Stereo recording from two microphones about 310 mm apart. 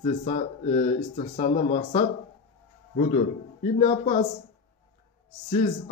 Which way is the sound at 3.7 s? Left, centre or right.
Left.